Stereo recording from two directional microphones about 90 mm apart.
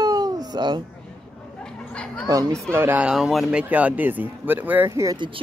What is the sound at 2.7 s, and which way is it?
Speech, 25° right (ahead or behind).